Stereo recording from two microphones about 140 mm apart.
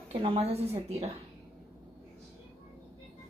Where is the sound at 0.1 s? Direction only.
40° right (ahead or behind).